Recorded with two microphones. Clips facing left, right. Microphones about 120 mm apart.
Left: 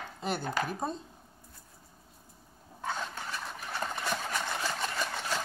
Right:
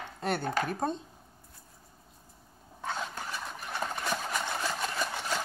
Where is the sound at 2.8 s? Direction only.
Centre (ahead or behind).